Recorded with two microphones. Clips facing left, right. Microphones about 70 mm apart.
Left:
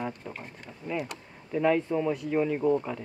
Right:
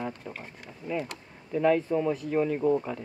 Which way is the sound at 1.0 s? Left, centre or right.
Centre.